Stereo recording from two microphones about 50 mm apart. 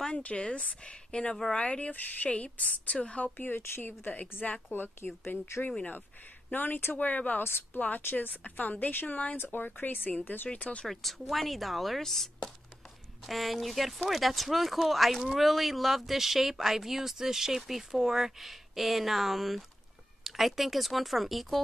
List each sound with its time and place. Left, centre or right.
0.0 s speech: left
1.3 s speech: centre
1.6 s a woman's voice: left
3.3 s a woman's voice: left
6.5 s speech: left
8.0 s a woman's voice: left
9.4 s speech: left
10.5 s a woman's voice: left
10.9 s speech: centre